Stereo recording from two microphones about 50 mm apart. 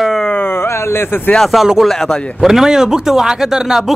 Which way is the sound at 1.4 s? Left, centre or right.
Centre.